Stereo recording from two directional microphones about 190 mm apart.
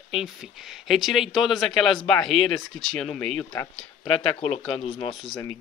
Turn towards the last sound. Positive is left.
turn(degrees=30)  # may be behind; listen again after turning